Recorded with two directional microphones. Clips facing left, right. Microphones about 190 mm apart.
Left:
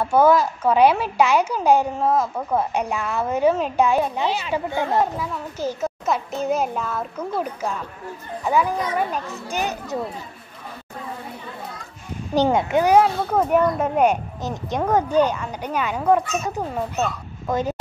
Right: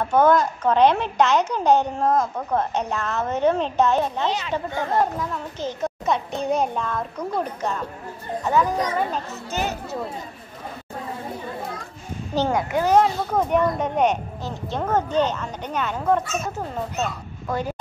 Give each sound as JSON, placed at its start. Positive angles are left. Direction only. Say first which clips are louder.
{"t": 0.0, "sound": "a woman's voice", "louder": "left 1 dB", "side_deg": 10}
{"t": 12.4, "sound": "a woman's voice", "louder": "left 4 dB", "side_deg": 20}
{"t": 12.9, "sound": "a woman's voice", "louder": "even", "side_deg": 5}
{"t": 17.5, "sound": "speech", "louder": "left 3 dB", "side_deg": 20}